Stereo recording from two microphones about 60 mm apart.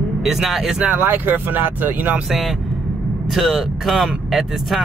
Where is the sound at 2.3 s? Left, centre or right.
Centre.